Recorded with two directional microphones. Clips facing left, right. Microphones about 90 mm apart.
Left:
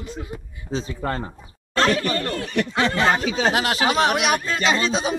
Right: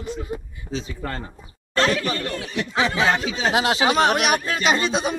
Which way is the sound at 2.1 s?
50° left (ahead or behind).